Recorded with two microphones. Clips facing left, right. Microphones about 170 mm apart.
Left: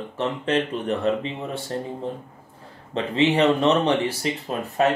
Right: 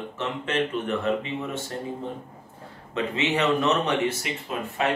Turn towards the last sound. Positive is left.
turn(degrees=35)  # may be behind; listen again after turning